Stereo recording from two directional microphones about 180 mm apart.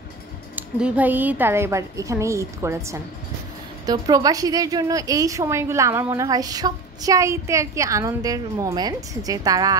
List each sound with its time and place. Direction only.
0.6 s a woman's voice: 5° right (ahead or behind)